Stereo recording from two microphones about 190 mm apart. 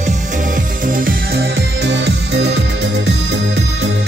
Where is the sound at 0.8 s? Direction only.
50° right (ahead or behind).